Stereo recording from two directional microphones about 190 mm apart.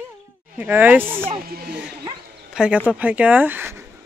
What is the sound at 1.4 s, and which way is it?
Speech, 50° right (ahead or behind).